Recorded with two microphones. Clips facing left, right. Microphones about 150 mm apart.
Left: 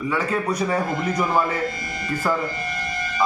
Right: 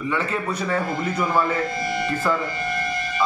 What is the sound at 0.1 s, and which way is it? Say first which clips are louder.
A man's voice: left 2 dB; 10° left (ahead or behind).